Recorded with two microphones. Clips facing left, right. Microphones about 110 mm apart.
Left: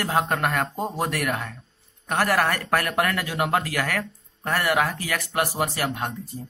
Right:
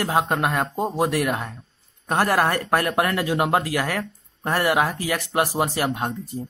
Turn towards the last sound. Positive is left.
turn(degrees=-25)  # may be behind; listen again after turning